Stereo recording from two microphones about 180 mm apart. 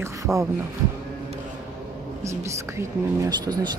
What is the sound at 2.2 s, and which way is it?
Speech, 15° right (ahead or behind).